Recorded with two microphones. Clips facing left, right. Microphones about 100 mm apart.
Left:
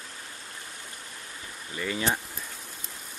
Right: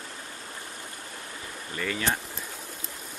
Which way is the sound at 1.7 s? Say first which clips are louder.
Left 1 dB; 20° left (ahead or behind).